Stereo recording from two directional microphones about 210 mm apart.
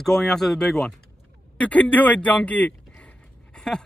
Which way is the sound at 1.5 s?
5° left (ahead or behind).